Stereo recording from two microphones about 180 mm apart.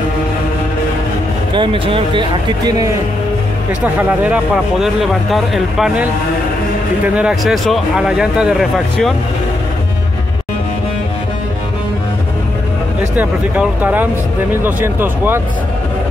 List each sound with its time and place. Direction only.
1.5 s speech: 30° right (ahead or behind)
3.8 s speech: 10° right (ahead or behind)
7.2 s speech: 5° right (ahead or behind)
13.1 s speech: 10° right (ahead or behind)